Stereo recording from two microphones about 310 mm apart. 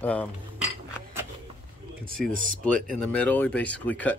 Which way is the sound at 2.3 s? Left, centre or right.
Right.